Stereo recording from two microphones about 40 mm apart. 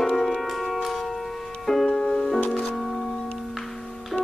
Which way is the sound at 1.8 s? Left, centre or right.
Left.